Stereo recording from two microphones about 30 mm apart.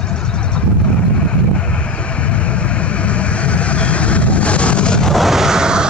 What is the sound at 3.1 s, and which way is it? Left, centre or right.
Vehicle, left.